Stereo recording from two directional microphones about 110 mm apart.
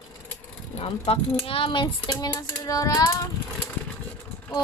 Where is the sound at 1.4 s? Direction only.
55° left (ahead or behind); by 3.3 s 35° left (ahead or behind).